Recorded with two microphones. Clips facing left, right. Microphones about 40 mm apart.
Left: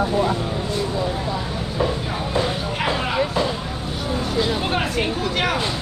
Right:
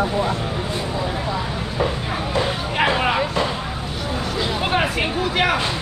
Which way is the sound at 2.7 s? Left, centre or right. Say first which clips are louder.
Right 5 dB; right.